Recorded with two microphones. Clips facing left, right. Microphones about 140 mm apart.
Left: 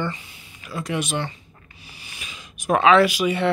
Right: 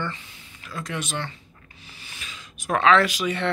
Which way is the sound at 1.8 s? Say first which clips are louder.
Left 1 dB; 15° left (ahead or behind).